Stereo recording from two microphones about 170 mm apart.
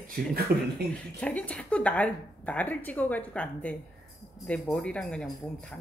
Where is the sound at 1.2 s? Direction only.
10° left (ahead or behind).